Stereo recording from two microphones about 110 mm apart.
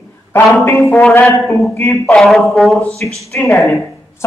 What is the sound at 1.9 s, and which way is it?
Speech, 5° left (ahead or behind).